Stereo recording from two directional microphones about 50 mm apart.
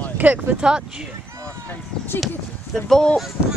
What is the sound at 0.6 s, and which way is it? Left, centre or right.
Speech, centre.